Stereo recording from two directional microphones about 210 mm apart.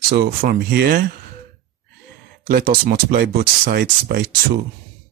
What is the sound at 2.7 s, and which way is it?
Speech, 45° right (ahead or behind).